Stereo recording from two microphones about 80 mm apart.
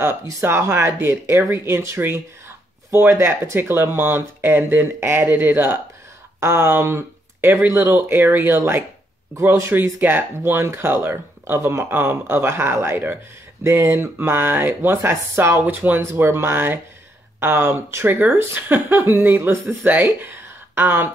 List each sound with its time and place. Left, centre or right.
0.0 s speech: right
7.9 s speech: right